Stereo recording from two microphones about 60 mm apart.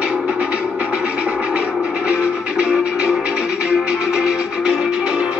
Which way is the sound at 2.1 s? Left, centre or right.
Centre.